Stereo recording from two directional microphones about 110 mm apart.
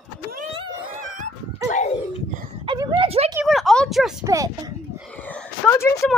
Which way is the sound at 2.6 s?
45° right (ahead or behind).